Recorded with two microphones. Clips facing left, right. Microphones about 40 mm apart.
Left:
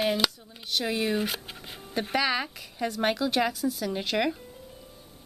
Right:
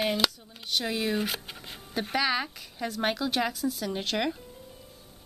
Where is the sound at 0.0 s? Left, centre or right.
Centre.